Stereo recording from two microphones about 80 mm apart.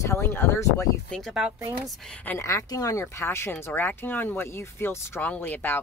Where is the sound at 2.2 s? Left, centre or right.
Left.